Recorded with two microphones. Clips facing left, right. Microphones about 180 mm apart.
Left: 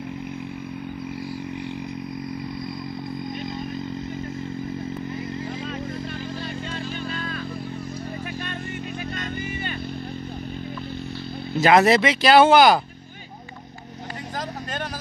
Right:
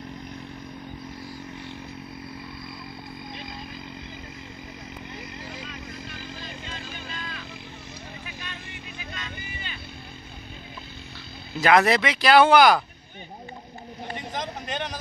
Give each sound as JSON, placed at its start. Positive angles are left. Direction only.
{"t": 7.1, "sound": "motorcycle", "side_deg": 45}
{"t": 9.1, "sound": "vehicle", "side_deg": 55}
{"t": 11.6, "sound": "speech", "side_deg": 25}